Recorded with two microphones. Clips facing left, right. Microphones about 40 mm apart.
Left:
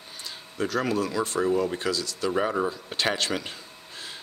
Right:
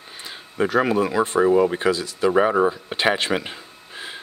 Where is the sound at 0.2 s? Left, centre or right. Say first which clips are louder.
Right 7 dB; right.